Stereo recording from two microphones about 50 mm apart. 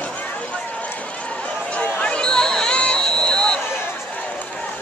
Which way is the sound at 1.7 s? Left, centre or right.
Left.